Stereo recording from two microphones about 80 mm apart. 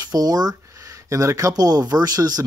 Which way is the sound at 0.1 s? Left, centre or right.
Right.